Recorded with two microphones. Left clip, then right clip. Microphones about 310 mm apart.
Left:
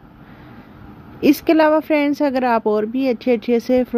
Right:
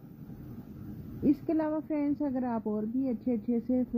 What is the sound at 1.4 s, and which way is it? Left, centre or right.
Speech, left.